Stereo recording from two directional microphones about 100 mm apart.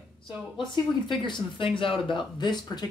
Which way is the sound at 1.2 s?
55° left (ahead or behind).